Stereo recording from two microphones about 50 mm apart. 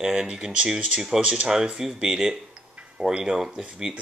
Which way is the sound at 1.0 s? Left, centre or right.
Centre.